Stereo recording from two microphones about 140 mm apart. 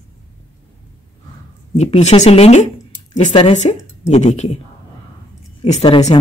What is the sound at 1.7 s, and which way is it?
Speech, 50° left (ahead or behind).